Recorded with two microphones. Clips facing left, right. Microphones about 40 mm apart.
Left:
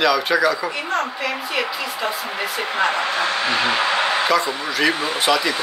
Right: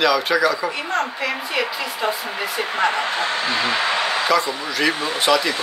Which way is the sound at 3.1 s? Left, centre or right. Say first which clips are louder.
Left 1 dB; left.